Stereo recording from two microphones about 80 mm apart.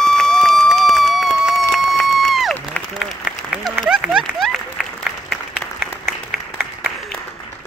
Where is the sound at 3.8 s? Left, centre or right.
Centre.